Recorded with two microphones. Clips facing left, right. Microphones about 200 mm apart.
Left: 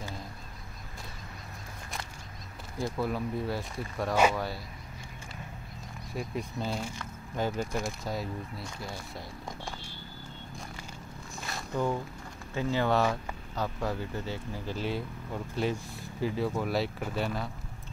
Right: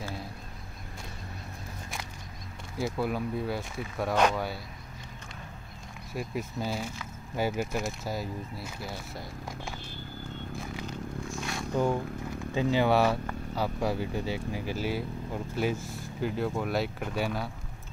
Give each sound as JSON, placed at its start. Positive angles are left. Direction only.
{"t": 2.8, "sound": "speech", "side_deg": 0}
{"t": 6.1, "sound": "speech", "side_deg": -5}
{"t": 10.5, "sound": "a sound", "side_deg": -5}
{"t": 11.7, "sound": "speech", "side_deg": -15}